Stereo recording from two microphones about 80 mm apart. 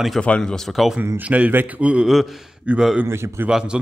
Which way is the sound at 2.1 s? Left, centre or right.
Centre.